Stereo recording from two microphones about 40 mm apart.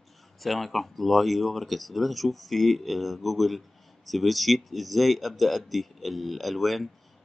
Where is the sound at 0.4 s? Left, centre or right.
Centre.